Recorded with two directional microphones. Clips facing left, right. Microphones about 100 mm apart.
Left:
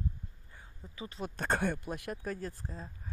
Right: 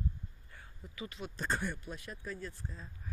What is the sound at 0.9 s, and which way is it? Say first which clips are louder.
Speech: left 3 dB; 35° left (ahead or behind).